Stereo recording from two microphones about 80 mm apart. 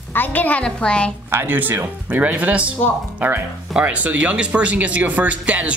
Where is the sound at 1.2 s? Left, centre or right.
Right.